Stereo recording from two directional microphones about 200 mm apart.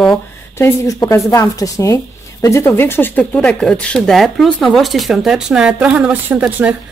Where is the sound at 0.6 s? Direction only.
15° left (ahead or behind).